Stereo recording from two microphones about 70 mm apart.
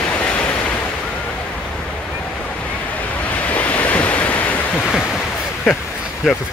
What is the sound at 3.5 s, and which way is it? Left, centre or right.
Waves, left.